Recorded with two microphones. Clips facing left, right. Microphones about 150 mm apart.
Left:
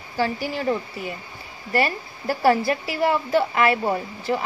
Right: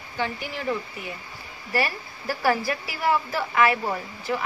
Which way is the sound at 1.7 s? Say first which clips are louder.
Left 4 dB; 25° left (ahead or behind).